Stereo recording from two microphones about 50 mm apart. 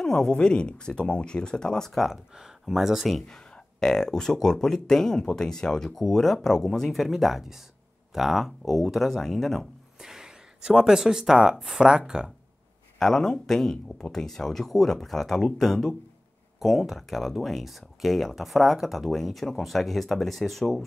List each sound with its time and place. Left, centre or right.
0.0 s speech: centre
1.9 s speech: centre
2.1 s speech: centre
3.3 s speech: centre
9.9 s speech: centre
13.0 s speech: centre